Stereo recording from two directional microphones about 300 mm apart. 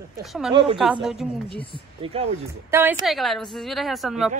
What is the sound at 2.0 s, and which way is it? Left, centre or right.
Speech, centre.